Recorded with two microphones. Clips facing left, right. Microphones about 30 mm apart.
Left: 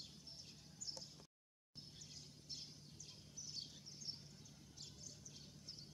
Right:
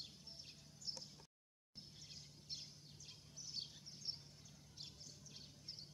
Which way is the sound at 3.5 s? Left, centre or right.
Right.